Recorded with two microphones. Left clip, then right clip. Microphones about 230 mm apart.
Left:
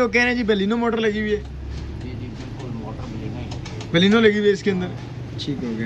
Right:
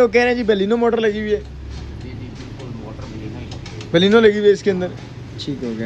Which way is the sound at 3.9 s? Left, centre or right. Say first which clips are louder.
Right 4 dB; right.